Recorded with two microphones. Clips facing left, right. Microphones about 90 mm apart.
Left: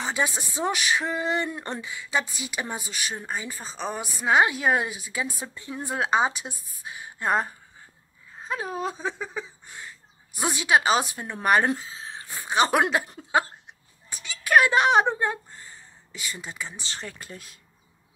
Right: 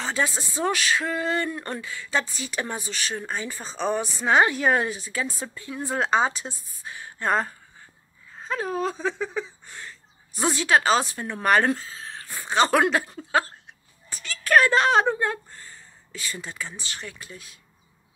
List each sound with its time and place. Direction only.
0.0 s speech: 15° left (ahead or behind)
5.9 s speech: 10° left (ahead or behind)
14.0 s a sound: 10° left (ahead or behind)
16.9 s speech: 35° left (ahead or behind)